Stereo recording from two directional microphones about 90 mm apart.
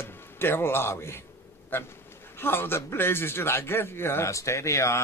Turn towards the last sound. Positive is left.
turn(degrees=35)  # may be behind; listen again after turning